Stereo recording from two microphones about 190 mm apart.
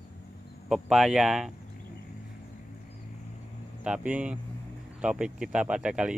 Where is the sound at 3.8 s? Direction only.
5° right (ahead or behind).